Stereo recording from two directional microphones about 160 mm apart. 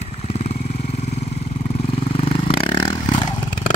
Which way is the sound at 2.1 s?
35° left (ahead or behind).